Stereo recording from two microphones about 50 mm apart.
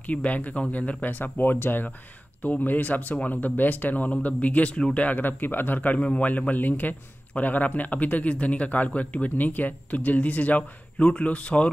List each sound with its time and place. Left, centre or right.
0.0 s a man's voice: left
5.0 s a man's voice: left